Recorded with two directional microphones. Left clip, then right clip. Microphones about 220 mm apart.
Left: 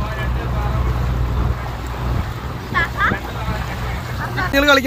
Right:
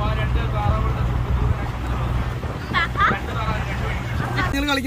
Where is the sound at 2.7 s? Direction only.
15° right (ahead or behind).